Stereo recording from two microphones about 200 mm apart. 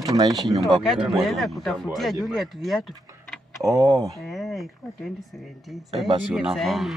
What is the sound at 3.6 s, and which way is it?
Speech, 15° right (ahead or behind).